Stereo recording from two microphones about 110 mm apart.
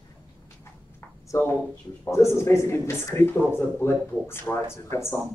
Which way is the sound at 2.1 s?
25° left (ahead or behind).